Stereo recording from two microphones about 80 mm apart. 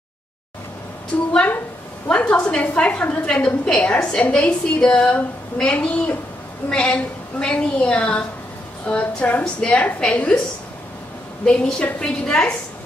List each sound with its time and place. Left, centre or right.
2.0 s a woman's voice: centre
11.4 s a woman's voice: centre